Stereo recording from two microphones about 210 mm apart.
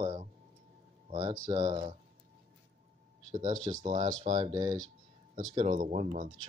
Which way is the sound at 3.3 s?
35° right (ahead or behind).